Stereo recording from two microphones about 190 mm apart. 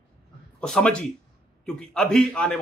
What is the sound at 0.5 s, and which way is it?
Speech, 5° left (ahead or behind).